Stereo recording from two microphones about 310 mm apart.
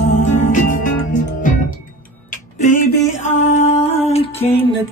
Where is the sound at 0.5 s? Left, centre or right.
Left.